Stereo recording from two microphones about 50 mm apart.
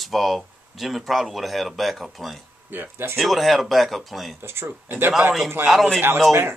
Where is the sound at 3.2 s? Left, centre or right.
Centre.